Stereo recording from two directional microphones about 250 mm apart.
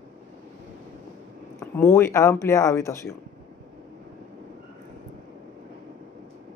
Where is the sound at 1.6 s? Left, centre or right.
Centre.